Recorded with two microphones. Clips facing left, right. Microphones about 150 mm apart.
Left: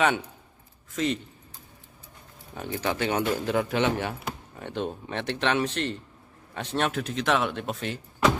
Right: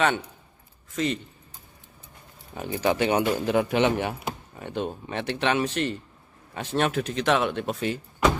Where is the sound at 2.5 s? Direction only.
15° right (ahead or behind).